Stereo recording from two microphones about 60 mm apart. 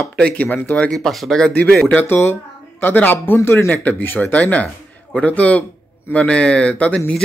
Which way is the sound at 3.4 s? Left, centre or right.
Left.